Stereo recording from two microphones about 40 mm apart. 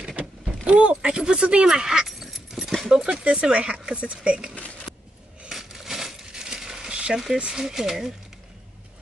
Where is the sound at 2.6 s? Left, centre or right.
Centre.